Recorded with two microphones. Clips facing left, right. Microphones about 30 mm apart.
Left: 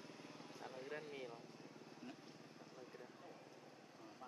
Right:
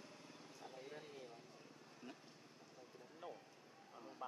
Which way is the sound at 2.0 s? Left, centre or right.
Centre.